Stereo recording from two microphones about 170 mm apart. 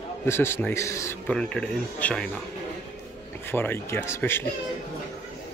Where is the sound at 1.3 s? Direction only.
5° left (ahead or behind).